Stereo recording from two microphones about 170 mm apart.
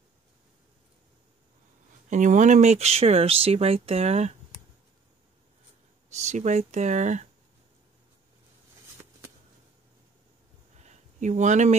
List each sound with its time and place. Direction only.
2.0 s speech: 45° right (ahead or behind)
6.1 s speech: 45° right (ahead or behind)
10.8 s a sound: 45° right (ahead or behind)